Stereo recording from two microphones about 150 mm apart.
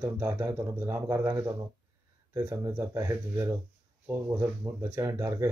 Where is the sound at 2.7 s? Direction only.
15° right (ahead or behind).